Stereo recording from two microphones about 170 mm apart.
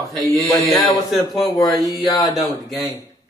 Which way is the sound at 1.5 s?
20° left (ahead or behind).